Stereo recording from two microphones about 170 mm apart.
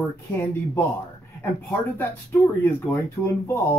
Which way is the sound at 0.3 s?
15° left (ahead or behind).